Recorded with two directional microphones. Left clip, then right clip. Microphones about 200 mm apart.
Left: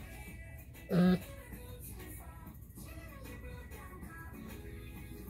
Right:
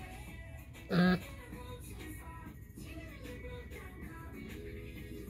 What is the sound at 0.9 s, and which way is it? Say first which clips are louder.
Music: right 1 dB; 5° left (ahead or behind).